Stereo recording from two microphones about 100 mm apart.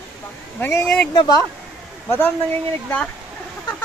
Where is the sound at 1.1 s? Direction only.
45° left (ahead or behind).